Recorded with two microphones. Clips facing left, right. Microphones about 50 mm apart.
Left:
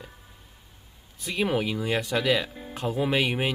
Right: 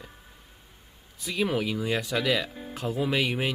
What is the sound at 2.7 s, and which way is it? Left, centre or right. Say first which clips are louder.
Speech: left 2 dB; left.